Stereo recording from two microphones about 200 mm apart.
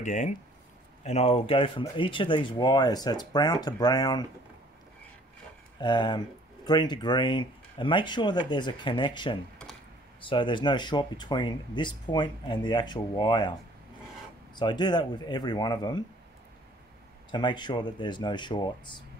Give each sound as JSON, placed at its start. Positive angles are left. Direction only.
{"t": 0.0, "sound": "speech", "side_deg": 35}
{"t": 5.8, "sound": "speech", "side_deg": 20}
{"t": 17.3, "sound": "speech", "side_deg": 20}